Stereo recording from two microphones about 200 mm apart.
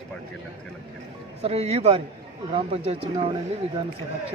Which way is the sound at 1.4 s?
30° right (ahead or behind).